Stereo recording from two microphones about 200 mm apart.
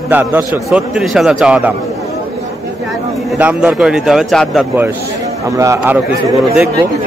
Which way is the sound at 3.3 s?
5° right (ahead or behind).